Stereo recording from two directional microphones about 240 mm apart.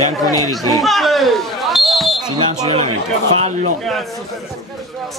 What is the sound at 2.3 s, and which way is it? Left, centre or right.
Speech, centre.